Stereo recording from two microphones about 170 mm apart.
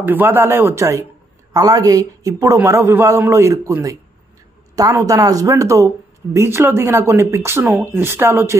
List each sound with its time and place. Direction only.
0.0 s a man's voice: 10° right (ahead or behind)